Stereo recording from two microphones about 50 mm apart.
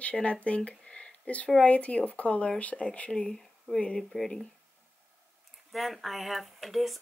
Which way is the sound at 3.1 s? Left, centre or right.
Centre.